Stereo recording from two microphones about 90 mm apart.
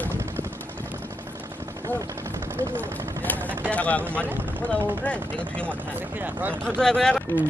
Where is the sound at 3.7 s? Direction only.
15° left (ahead or behind).